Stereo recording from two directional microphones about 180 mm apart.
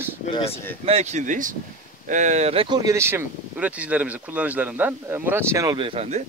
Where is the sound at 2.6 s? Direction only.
20° right (ahead or behind).